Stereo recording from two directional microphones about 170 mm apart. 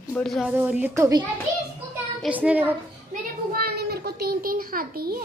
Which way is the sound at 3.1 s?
60° right (ahead or behind).